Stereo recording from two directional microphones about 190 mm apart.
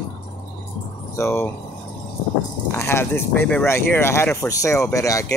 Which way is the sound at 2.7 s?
15° left (ahead or behind).